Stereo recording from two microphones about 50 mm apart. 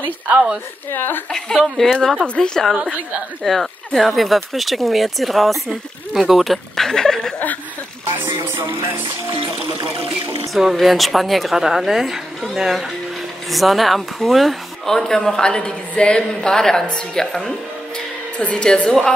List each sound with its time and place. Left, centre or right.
0.9 s speech: left
1.3 s speech: centre
2.7 s a woman's voice: right
3.4 s speech: centre
8.1 s music: right
10.5 s speech: centre
18.4 s a woman's voice: left